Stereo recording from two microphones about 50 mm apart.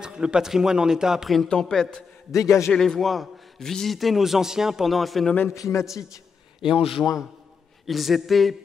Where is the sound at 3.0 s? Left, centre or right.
Centre.